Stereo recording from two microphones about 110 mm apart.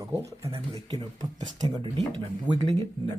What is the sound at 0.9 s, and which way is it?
Speech, 40° right (ahead or behind).